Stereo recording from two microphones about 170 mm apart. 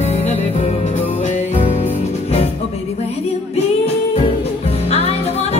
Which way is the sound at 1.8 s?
35° left (ahead or behind).